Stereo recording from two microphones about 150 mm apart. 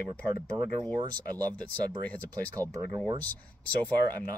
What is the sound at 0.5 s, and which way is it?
Speech, 20° right (ahead or behind).